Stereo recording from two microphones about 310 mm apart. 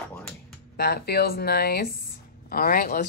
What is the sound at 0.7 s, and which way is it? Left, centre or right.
Speech, left.